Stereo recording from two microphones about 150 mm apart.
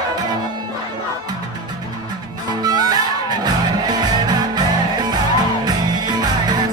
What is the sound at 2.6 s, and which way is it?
Music, 25° right (ahead or behind).